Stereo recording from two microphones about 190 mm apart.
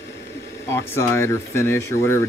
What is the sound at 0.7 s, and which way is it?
Speech, 15° left (ahead or behind).